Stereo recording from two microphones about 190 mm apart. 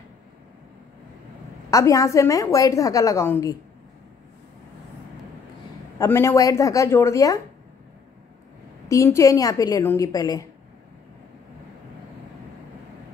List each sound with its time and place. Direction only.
1.7 s a woman's voice: 15° left (ahead or behind)
5.9 s a woman's voice: 15° left (ahead or behind)
8.8 s a woman's voice: 15° left (ahead or behind)